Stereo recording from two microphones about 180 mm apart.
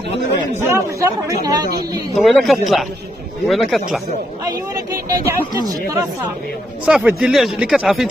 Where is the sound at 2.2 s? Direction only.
Centre (ahead or behind).